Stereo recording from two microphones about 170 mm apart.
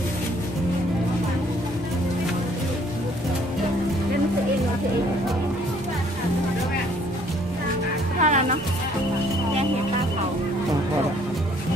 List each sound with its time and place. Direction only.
8.2 s music: 45° right (ahead or behind)